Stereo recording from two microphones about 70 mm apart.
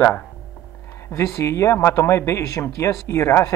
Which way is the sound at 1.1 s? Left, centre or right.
Left.